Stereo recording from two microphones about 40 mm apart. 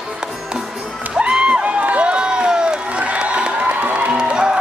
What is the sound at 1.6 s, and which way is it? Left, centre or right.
Run, right.